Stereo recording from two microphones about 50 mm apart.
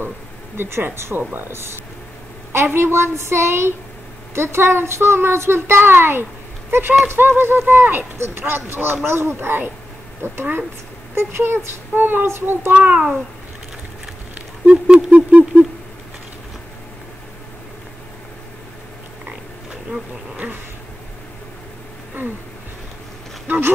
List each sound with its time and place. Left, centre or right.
0.6 s speech: right
11.9 s speech: right
12.3 s speech: right
12.7 s a child's voice: right
15.0 s a sound: right
23.4 s a sound: right